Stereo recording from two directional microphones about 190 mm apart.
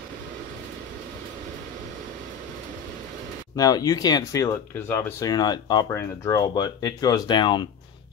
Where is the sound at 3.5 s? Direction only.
20° left (ahead or behind).